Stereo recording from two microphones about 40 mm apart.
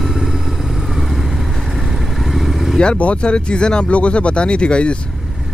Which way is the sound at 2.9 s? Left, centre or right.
Left.